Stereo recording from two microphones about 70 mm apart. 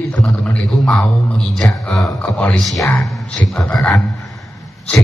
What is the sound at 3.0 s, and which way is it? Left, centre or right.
Speech, centre.